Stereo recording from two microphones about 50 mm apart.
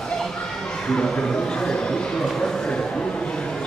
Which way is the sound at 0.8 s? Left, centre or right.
Centre.